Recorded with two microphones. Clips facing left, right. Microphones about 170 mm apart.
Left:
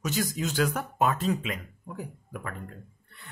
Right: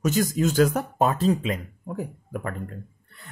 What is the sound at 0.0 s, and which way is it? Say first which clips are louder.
Speech: right 7 dB; 45° right (ahead or behind).